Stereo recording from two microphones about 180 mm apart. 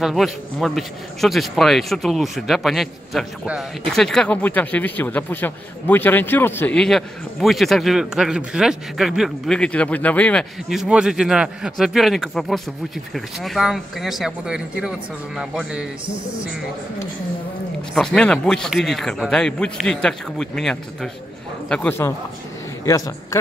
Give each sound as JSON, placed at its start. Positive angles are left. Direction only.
{"t": 0.0, "sound": "speech", "side_deg": 0}
{"t": 17.9, "sound": "a man's voice", "side_deg": 5}